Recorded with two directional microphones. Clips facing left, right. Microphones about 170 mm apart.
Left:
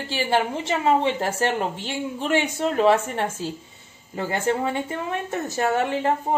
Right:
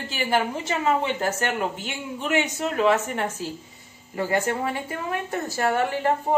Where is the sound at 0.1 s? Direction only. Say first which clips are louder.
Left 1 dB; 30° left (ahead or behind).